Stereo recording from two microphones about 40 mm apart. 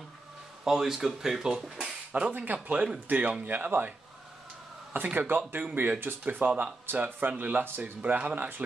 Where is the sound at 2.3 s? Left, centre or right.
Right.